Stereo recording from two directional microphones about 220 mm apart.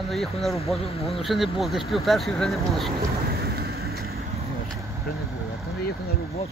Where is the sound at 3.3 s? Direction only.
45° right (ahead or behind).